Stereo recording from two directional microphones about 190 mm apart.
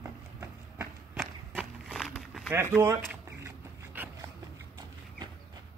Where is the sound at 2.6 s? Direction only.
10° right (ahead or behind).